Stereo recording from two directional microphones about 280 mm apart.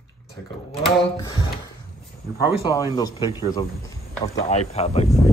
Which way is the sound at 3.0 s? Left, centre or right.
Centre.